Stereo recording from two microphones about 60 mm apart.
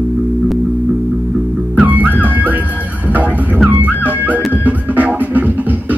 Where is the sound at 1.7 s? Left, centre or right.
Right.